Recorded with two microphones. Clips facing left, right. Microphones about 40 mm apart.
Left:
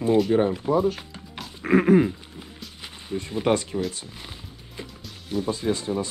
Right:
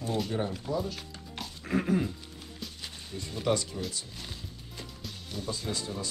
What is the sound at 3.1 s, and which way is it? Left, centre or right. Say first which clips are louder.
Speech: left 7 dB; left.